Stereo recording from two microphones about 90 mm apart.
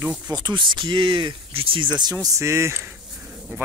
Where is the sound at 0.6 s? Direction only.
60° right (ahead or behind); by 1.9 s 85° right.